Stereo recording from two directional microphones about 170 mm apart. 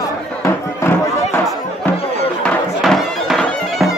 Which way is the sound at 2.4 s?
Centre (ahead or behind).